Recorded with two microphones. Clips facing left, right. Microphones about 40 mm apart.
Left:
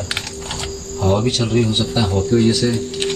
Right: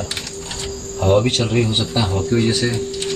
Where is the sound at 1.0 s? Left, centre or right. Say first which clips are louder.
Right 2 dB; right.